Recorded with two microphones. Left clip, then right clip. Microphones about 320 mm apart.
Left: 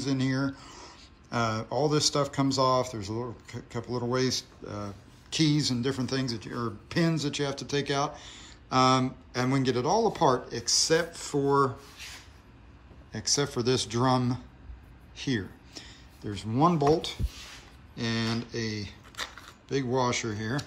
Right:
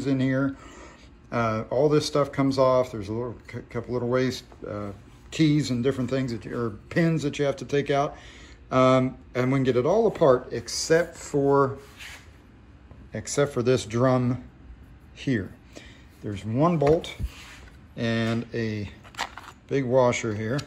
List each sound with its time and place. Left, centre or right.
0.0 s speech: centre
13.1 s speech: centre
15.1 s a sound: centre
16.3 s speech: centre